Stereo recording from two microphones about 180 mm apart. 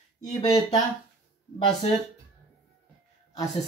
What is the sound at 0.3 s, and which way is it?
Speech, 25° left (ahead or behind).